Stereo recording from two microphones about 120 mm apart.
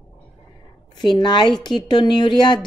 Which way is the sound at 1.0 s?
40° left (ahead or behind).